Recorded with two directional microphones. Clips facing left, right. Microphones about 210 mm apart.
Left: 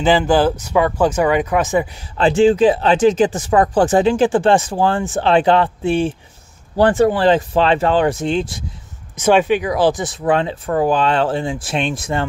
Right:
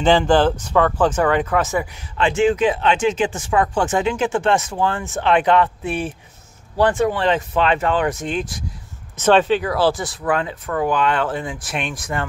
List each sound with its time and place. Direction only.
0.0 s speech: 5° left (ahead or behind)
2.1 s speech: 35° left (ahead or behind)
9.1 s speech: 10° left (ahead or behind)